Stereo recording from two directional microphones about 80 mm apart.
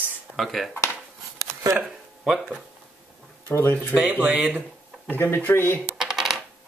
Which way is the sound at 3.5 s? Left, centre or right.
Left.